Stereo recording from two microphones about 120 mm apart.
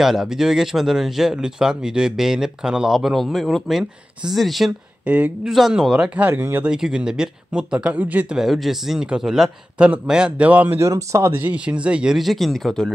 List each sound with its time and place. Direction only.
0.0 s speech: 5° right (ahead or behind)
5.0 s speech: 15° right (ahead or behind)
5.5 s speech: 5° right (ahead or behind)
8.4 s speech: centre (ahead or behind)
10.8 s speech: 25° right (ahead or behind)
11.4 s speech: 10° right (ahead or behind)